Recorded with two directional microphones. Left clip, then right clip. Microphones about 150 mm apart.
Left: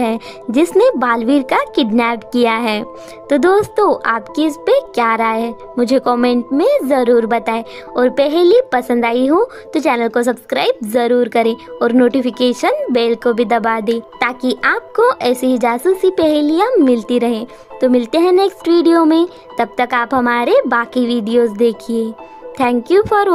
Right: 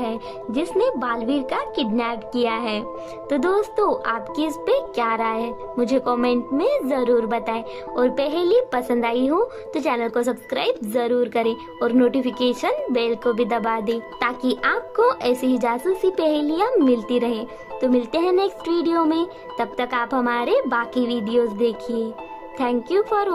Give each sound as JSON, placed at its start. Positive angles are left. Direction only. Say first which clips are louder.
{"t": 0.0, "sound": "speech", "louder": "left 8 dB", "side_deg": 55}